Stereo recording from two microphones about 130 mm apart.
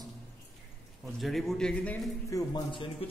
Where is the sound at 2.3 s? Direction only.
35° left (ahead or behind).